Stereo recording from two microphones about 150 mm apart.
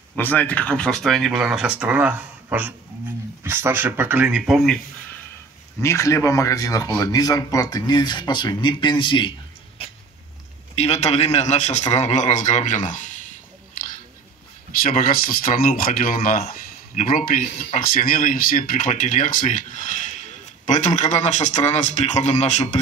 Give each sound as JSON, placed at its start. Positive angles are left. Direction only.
{"t": 0.2, "sound": "speech", "side_deg": 10}
{"t": 5.8, "sound": "speech", "side_deg": 20}
{"t": 10.8, "sound": "a man's voice", "side_deg": 45}
{"t": 14.8, "sound": "speech", "side_deg": 70}
{"t": 17.4, "sound": "a man's voice", "side_deg": 45}
{"t": 17.7, "sound": "speech", "side_deg": 70}